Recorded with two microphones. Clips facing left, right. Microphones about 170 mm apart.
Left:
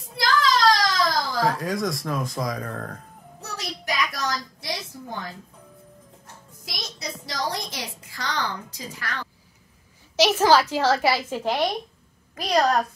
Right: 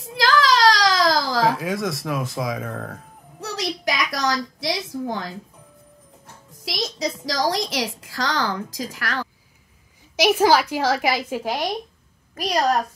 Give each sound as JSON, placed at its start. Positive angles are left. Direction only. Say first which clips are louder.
{"t": 0.0, "sound": "children playing", "louder": "right 3 dB", "side_deg": -90}
{"t": 1.5, "sound": "speech", "louder": "right 2 dB", "side_deg": 0}
{"t": 3.3, "sound": "a sound", "louder": "right 7 dB", "side_deg": -90}
{"t": 6.6, "sound": "a woman's voice", "louder": "right 10 dB", "side_deg": -90}
{"t": 10.1, "sound": "a child's voice", "louder": "right 1 dB", "side_deg": -10}